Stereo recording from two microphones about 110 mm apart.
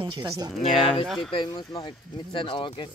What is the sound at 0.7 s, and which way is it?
Speech, 5° left (ahead or behind).